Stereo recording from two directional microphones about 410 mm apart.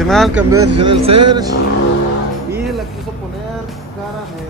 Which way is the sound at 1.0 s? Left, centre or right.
Right.